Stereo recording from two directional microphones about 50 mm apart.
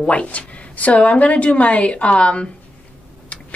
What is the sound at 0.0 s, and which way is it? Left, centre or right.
A woman's voice, left.